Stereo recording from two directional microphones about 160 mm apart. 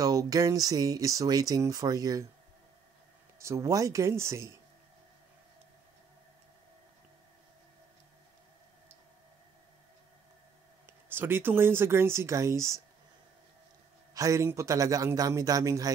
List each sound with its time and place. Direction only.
0.0 s speech: 20° right (ahead or behind)
3.3 s speech: 20° right (ahead or behind)
10.9 s speech: 15° right (ahead or behind)
14.1 s speech: 20° right (ahead or behind)